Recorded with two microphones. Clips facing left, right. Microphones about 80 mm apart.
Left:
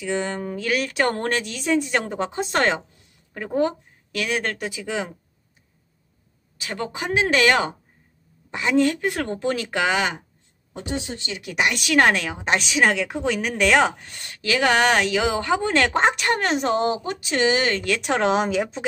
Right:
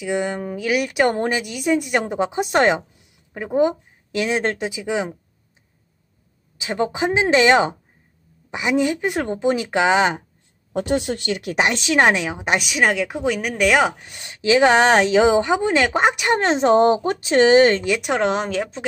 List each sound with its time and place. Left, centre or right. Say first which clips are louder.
0.0 s a woman's voice: right 3 dB; centre
6.6 s a woman's voice: right 7 dB; right
10.7 s speech: right 8 dB; right
11.5 s a woman's voice: right 1 dB; right; by 16.3 s centre
16.3 s speech: right 6 dB; right
18.0 s a woman's voice: even; centre